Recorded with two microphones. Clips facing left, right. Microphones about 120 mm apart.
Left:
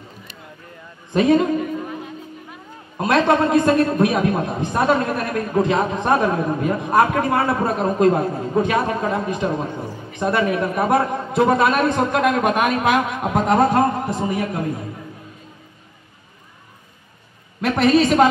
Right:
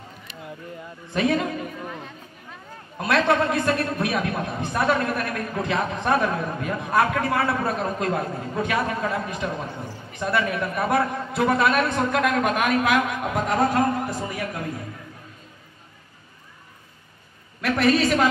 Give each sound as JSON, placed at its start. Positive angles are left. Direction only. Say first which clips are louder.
{"t": 1.1, "sound": "a man's voice", "louder": "left 7 dB", "side_deg": 25}
{"t": 3.0, "sound": "a man's voice", "louder": "left 4 dB", "side_deg": 25}
{"t": 17.6, "sound": "a man's voice", "louder": "left 4 dB", "side_deg": 25}